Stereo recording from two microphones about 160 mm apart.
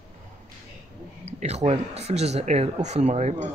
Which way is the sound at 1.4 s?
45° right (ahead or behind).